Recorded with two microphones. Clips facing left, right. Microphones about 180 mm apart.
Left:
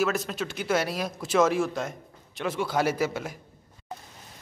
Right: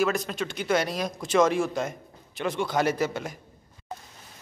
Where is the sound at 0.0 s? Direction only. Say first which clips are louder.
Right 1 dB; 5° left (ahead or behind).